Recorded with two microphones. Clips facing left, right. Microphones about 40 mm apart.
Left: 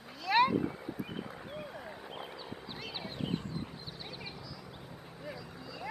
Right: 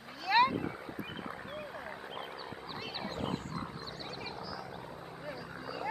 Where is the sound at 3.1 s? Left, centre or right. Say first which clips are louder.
Left 1 dB; centre.